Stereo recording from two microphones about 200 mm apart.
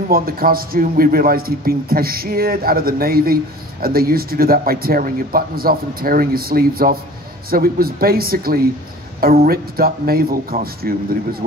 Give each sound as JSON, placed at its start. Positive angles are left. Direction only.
{"t": 0.1, "sound": "a man's voice", "side_deg": -45}